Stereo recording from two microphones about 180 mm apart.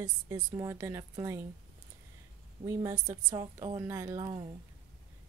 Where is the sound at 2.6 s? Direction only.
15° right (ahead or behind).